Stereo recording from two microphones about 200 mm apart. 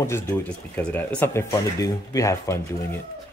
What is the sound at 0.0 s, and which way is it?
Speech, 10° left (ahead or behind).